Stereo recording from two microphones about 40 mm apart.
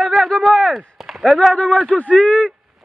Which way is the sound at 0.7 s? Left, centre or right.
Centre.